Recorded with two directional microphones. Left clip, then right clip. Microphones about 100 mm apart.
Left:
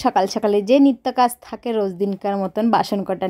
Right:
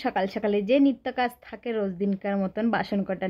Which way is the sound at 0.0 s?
50° left (ahead or behind).